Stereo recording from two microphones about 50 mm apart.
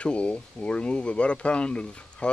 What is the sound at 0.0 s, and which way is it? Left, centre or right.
Speech, left.